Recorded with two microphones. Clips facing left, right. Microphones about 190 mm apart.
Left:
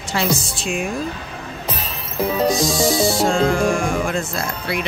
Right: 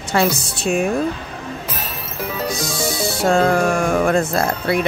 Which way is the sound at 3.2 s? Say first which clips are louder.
Right 6 dB; 60° right (ahead or behind).